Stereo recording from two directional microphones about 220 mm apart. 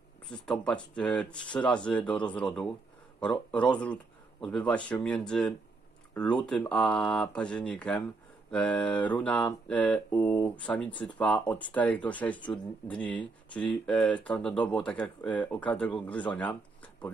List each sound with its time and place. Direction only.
0.3 s mantra: 5° left (ahead or behind)